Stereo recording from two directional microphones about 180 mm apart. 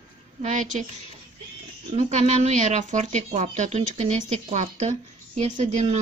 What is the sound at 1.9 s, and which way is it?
Speech, 40° right (ahead or behind).